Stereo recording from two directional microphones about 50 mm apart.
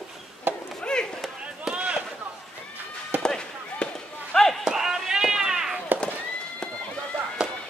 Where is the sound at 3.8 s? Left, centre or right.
Left.